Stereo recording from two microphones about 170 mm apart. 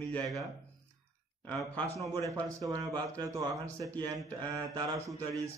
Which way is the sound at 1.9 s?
20° right (ahead or behind).